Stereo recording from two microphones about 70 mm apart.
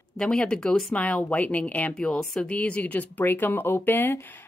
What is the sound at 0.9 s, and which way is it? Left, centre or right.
A woman's voice, centre.